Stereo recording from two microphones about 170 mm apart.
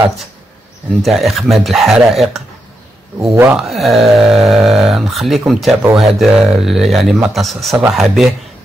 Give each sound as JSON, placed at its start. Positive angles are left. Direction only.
{"t": 1.0, "sound": "a man's voice", "side_deg": 0}
{"t": 3.2, "sound": "a man's voice", "side_deg": -15}
{"t": 3.6, "sound": "a man's voice", "side_deg": 0}